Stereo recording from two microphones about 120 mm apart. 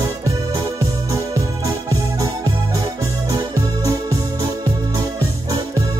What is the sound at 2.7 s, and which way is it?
Organ, 30° right (ahead or behind).